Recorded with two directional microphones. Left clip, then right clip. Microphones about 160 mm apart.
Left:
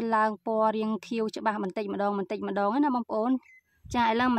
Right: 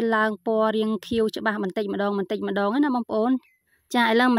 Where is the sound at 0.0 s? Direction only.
25° right (ahead or behind).